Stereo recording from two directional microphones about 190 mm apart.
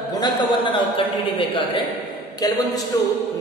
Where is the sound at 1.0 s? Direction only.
30° left (ahead or behind).